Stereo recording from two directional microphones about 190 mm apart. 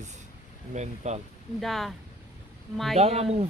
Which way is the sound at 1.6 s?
Centre (ahead or behind).